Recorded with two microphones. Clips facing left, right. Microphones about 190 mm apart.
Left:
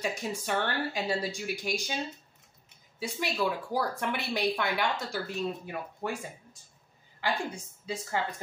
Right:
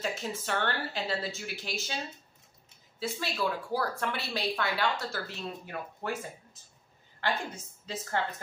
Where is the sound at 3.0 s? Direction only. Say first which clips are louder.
Left 2 dB; 15° left (ahead or behind).